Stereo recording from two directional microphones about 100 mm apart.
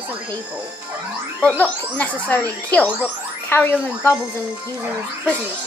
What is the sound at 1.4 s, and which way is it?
Speech, 15° left (ahead or behind).